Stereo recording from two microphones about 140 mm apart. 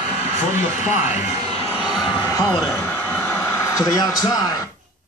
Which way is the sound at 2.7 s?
15° left (ahead or behind).